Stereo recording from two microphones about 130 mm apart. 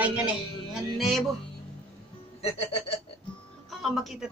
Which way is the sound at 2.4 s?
50° left (ahead or behind).